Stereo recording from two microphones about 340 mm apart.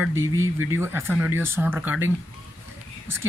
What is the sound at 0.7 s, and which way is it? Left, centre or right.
Speech, centre.